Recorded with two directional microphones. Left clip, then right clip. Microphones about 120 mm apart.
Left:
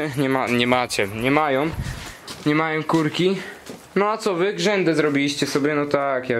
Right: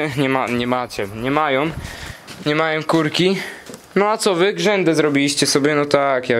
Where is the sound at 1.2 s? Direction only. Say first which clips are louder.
Right 3 dB; 15° right (ahead or behind).